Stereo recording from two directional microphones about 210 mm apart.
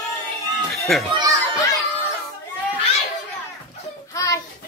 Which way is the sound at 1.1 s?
20° right (ahead or behind).